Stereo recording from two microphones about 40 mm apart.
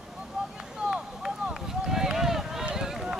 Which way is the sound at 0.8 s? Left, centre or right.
Centre.